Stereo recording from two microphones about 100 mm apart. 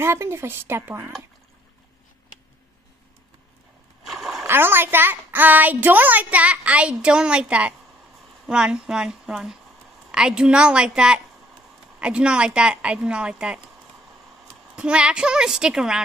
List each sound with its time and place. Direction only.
0.0 s speech: 25° right (ahead or behind)
4.0 s splash: centre (ahead or behind)
4.5 s a child's voice: 20° right (ahead or behind)
14.8 s a child's voice: 10° right (ahead or behind)